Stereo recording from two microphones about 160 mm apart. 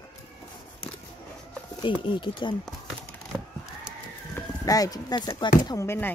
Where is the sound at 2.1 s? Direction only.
30° left (ahead or behind).